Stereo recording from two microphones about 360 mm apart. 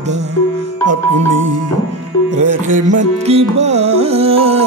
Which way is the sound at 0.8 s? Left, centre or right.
Right.